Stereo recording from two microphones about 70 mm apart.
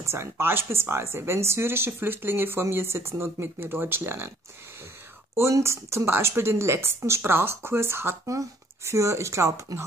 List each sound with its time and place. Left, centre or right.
0.0 s speech: right
5.3 s speech: right
8.3 s speech: right
9.7 s speech: right